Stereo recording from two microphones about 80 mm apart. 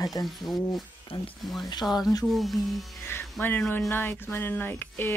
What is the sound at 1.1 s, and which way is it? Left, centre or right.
Speech, left.